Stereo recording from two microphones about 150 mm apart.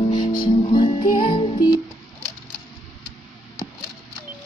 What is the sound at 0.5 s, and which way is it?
Music, 30° left (ahead or behind).